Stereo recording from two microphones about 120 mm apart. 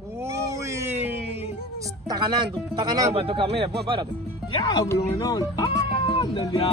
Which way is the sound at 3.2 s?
50° right (ahead or behind).